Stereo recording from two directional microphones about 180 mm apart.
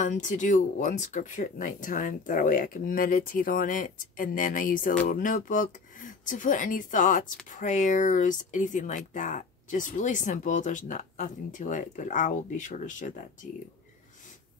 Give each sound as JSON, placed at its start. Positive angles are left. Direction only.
{"t": 0.0, "sound": "speech", "side_deg": 45}